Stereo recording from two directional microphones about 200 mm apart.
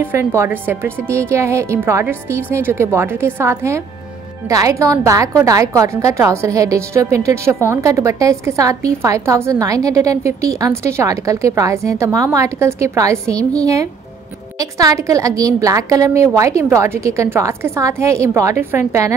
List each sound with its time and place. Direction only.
0.0 s a woman's voice: 15° right (ahead or behind)